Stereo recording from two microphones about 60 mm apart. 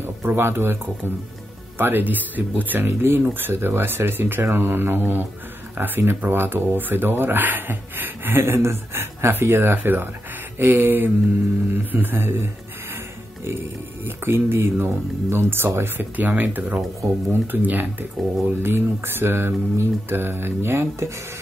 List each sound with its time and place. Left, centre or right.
0.0 s speech: right